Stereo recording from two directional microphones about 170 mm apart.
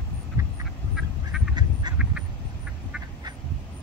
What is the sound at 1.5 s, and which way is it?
Duck, 25° right (ahead or behind).